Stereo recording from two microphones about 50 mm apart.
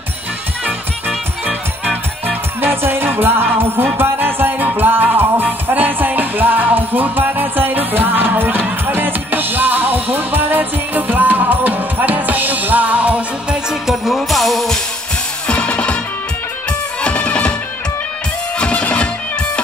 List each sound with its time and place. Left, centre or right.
2.2 s music: right
13.5 s music: centre
15.4 s music: left
17.0 s music: left
18.6 s music: left